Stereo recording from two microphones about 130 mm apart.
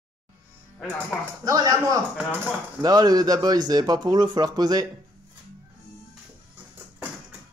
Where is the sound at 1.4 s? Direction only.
30° right (ahead or behind).